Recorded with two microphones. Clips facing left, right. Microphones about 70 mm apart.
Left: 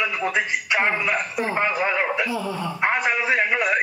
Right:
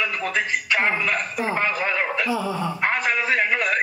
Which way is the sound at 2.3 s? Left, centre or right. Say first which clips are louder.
Right 2 dB; centre.